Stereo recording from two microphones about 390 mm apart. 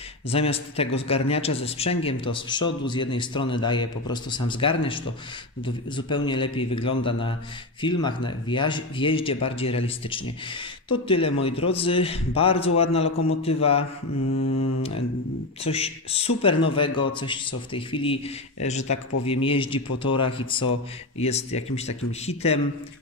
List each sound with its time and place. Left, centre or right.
0.3 s a man's voice: centre
15.6 s a man's voice: centre